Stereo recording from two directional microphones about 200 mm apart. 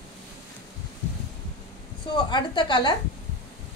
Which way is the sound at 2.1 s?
25° left (ahead or behind).